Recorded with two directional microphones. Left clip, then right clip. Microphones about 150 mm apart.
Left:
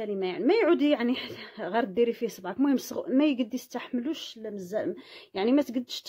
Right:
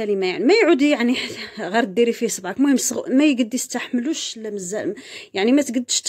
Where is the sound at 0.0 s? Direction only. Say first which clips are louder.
Right 9 dB; 30° right (ahead or behind).